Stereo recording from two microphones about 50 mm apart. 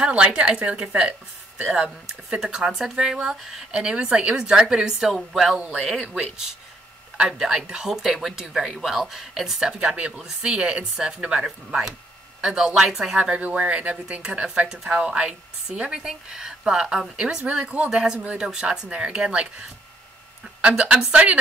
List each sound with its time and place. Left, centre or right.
0.0 s speech: centre
11.4 s speech: centre
13.4 s speech: right
20.6 s speech: centre